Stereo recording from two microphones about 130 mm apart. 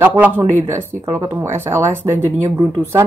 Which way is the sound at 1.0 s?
30° right (ahead or behind).